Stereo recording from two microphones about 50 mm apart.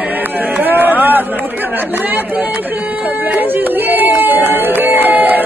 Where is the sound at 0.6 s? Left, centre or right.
Right.